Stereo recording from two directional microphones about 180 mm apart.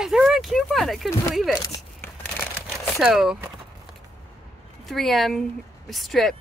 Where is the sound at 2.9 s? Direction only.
Centre (ahead or behind).